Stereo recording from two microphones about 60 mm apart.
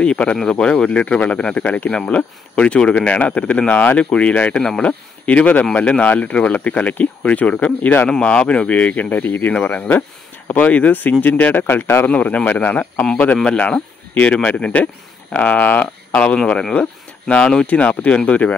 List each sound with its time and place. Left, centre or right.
0.0 s speech: centre
8.1 s speech: centre; by 12.1 s left
12.1 s speech: left
17.5 s speech: centre